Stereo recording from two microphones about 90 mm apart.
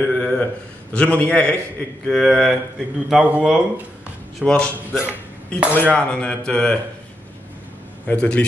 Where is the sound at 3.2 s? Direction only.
15° right (ahead or behind).